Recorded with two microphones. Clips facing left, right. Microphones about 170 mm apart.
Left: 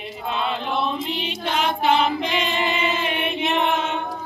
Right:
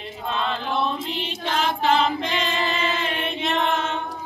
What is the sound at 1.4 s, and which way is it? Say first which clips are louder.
Choir: left 1 dB; 5° left (ahead or behind).